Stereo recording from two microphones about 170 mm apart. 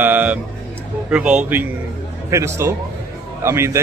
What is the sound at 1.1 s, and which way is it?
A man's voice, 5° right (ahead or behind).